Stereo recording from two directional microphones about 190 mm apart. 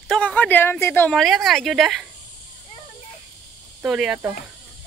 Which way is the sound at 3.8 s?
5° right (ahead or behind).